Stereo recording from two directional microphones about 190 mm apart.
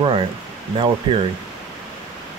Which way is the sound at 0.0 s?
25° right (ahead or behind).